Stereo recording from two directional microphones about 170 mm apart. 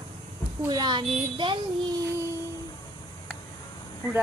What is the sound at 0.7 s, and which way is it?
Speech, 25° right (ahead or behind).